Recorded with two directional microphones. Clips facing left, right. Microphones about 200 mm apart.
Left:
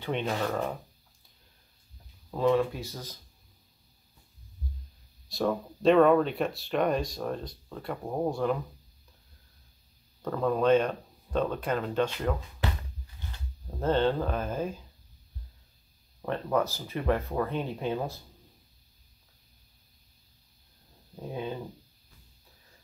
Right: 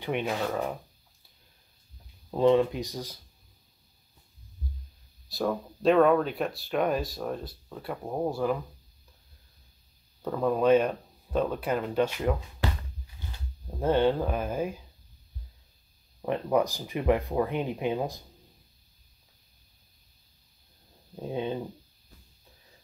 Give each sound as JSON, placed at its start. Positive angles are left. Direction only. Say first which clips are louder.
{"t": 0.0, "sound": "speech", "louder": "right 1 dB", "side_deg": -10}
{"t": 2.3, "sound": "speech", "louder": "right 3 dB", "side_deg": -25}
{"t": 5.3, "sound": "speech", "louder": "left 1 dB", "side_deg": 0}
{"t": 10.2, "sound": "speech", "louder": "right 1 dB", "side_deg": -15}
{"t": 13.7, "sound": "speech", "louder": "right 2 dB", "side_deg": -10}
{"t": 16.3, "sound": "speech", "louder": "right 2 dB", "side_deg": -15}
{"t": 21.2, "sound": "speech", "louder": "right 4 dB", "side_deg": -20}